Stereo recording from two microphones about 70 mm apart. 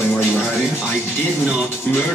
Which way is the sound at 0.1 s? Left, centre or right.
Left.